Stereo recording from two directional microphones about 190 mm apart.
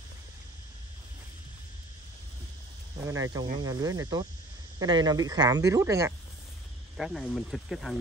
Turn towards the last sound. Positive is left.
turn(degrees=0)  # may be behind; listen again after turning